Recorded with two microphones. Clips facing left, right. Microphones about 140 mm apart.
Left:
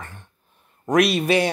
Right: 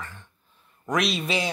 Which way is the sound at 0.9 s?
60° left (ahead or behind).